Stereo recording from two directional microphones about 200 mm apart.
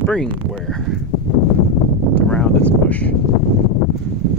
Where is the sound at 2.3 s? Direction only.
5° left (ahead or behind).